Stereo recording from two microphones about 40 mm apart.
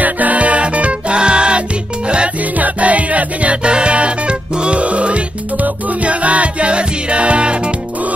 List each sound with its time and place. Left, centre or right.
0.0 s music: right
2.5 s music: right
3.6 s music: right